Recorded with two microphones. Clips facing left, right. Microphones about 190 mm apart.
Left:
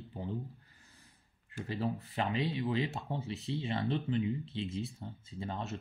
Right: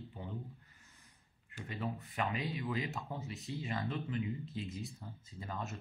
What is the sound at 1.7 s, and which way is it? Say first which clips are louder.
Speech: left 5 dB; 30° left (ahead or behind).